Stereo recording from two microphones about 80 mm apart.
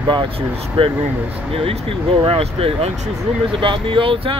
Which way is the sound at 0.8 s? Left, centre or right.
Right.